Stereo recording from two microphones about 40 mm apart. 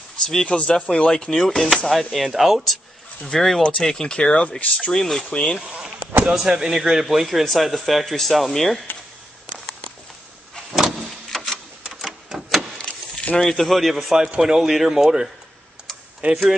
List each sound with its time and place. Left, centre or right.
0.2 s speech: centre
0.5 s speech: left; by 3.6 s centre
3.8 s speech: centre
4.5 s speech: left
4.9 s speech: centre
5.6 s speech: centre
11.2 s printer: centre
12.0 s printer: centre
12.7 s vehicle: left
13.4 s speech: centre
16.2 s speech: right